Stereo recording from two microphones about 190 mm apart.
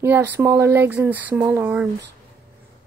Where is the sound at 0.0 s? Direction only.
10° right (ahead or behind).